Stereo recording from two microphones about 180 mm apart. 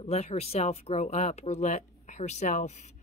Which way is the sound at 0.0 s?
35° left (ahead or behind).